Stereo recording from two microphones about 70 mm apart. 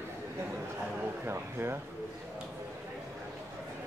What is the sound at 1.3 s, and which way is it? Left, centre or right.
Speech, right.